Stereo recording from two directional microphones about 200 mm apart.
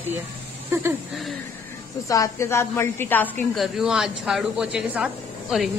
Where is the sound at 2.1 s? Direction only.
15° left (ahead or behind).